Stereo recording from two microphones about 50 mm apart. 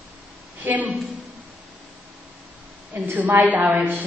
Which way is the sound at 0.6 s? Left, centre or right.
Right.